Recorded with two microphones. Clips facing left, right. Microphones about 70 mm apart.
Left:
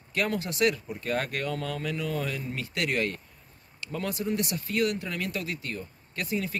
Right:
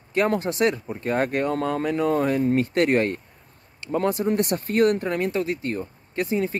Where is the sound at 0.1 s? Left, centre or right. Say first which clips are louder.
Right 7 dB; right.